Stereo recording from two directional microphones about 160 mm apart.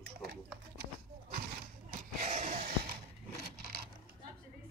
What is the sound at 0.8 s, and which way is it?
Horse, 65° right (ahead or behind).